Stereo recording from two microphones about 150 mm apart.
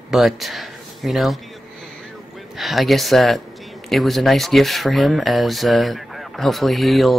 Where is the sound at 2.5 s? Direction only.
Centre (ahead or behind).